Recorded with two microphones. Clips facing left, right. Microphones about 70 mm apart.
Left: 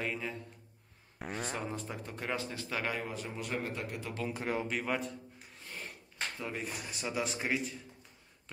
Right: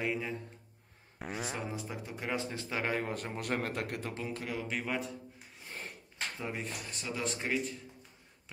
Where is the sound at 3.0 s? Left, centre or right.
Right.